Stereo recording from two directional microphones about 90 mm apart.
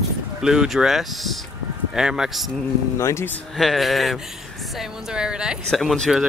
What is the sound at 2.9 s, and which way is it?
Speech, 35° left (ahead or behind).